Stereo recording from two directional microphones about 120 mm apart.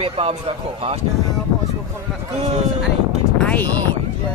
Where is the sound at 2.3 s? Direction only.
65° right (ahead or behind).